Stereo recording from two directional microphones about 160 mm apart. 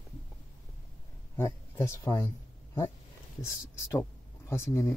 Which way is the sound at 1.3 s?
15° left (ahead or behind).